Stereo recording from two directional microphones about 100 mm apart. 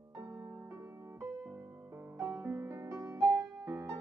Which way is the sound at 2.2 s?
30° right (ahead or behind).